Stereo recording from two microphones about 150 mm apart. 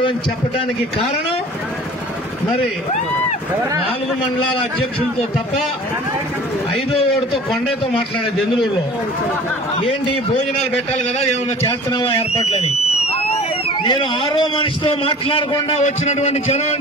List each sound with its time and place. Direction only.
11.6 s speech: 30° left (ahead or behind)
15.8 s a man's voice: 50° left (ahead or behind)